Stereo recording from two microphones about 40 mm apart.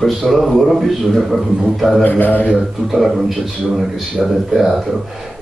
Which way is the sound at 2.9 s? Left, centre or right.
Centre.